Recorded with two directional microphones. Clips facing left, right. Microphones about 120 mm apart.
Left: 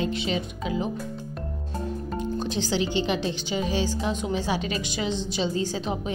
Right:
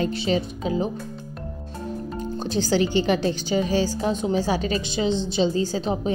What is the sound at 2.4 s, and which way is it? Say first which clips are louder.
Speech: right 8 dB; 40° right (ahead or behind).